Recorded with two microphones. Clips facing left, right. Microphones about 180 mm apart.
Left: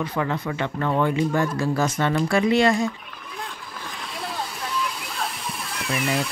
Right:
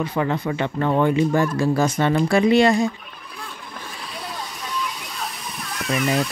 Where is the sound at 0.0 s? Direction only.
25° right (ahead or behind).